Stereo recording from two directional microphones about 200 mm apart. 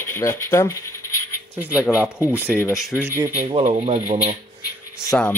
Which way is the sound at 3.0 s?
10° right (ahead or behind).